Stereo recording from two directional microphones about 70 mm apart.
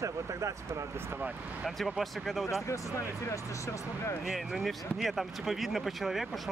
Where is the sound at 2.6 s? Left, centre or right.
Left.